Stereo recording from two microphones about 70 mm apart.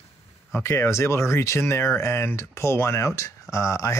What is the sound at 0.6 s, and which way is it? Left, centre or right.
Speech, left.